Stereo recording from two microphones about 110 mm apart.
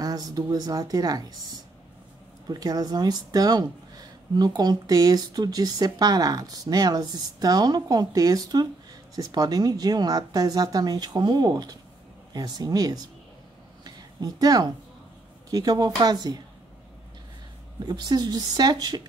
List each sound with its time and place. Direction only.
0.0 s speech: 35° right (ahead or behind)
2.4 s speech: 35° right (ahead or behind)
13.8 s a sound: 35° right (ahead or behind)
15.5 s speech: 35° right (ahead or behind)
17.7 s speech: 40° right (ahead or behind)